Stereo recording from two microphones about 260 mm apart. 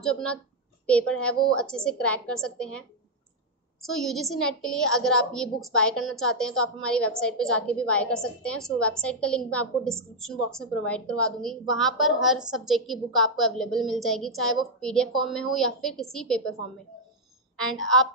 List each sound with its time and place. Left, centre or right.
0.0 s a woman's voice: centre
3.8 s a woman's voice: centre
17.6 s a woman's voice: centre